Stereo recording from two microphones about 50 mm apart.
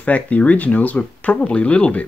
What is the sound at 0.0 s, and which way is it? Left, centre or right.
Speech, left.